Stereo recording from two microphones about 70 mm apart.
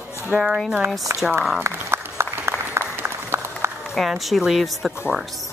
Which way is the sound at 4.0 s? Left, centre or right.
Centre.